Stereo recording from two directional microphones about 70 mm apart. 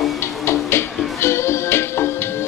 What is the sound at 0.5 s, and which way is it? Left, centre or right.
Music, left.